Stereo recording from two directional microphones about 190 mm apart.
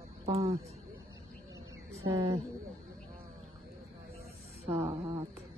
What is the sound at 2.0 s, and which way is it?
Speech, 30° right (ahead or behind).